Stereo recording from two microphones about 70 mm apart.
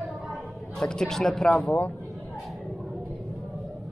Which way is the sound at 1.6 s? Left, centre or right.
Left.